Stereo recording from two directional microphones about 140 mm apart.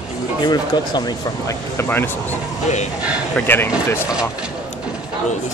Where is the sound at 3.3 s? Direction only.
15° left (ahead or behind).